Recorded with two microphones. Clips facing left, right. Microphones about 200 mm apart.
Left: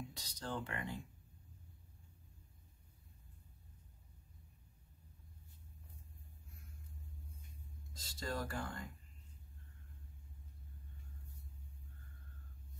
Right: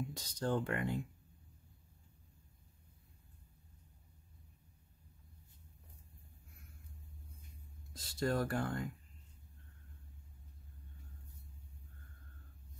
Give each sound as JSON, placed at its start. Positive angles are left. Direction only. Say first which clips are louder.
{"t": 0.1, "sound": "speech", "louder": "right 8 dB", "side_deg": -50}
{"t": 7.9, "sound": "speech", "louder": "right 8 dB", "side_deg": -60}